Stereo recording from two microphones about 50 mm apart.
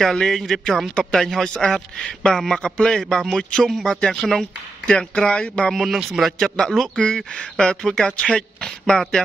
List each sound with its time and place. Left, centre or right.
0.0 s a man's voice: centre
1.5 s speech: centre
2.2 s a man's voice: centre
4.9 s speech: centre
5.8 s a man's voice: centre